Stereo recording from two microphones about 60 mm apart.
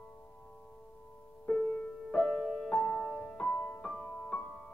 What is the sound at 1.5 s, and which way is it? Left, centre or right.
Music, left.